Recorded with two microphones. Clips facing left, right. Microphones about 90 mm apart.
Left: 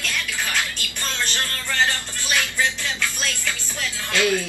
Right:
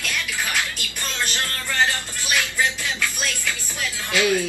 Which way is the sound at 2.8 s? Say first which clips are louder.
Even; 10° right (ahead or behind).